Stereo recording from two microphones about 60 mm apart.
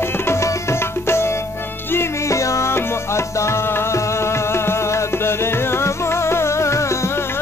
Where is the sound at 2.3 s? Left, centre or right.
Left.